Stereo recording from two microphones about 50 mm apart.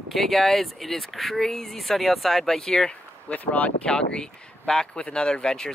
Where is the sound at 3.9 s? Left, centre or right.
Centre.